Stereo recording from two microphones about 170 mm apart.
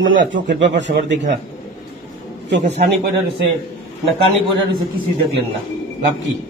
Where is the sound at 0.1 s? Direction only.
90° right.